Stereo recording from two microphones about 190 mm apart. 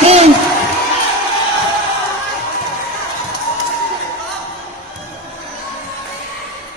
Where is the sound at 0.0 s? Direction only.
35° right (ahead or behind).